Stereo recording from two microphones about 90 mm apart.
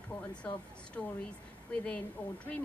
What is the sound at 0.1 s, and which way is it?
A woman's voice, 10° left (ahead or behind).